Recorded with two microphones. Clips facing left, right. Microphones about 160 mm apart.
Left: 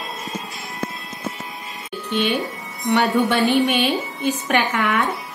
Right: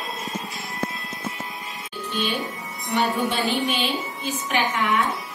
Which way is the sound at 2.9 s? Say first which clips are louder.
Left 5 dB; 70° left (ahead or behind).